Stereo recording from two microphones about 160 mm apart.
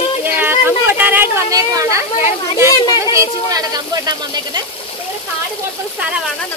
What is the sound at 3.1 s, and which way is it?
Speech, 20° right (ahead or behind).